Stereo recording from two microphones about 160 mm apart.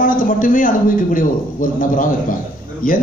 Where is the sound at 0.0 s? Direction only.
60° left (ahead or behind).